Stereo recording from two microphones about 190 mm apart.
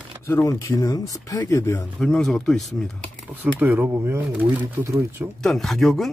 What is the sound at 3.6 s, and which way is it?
Speech, 10° right (ahead or behind).